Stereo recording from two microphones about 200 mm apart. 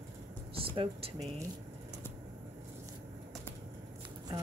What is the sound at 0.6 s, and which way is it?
Speech, 25° right (ahead or behind).